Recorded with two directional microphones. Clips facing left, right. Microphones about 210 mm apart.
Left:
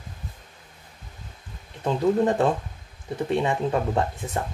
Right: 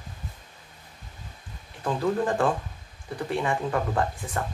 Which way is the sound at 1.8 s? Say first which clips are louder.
Left 4 dB; 20° left (ahead or behind).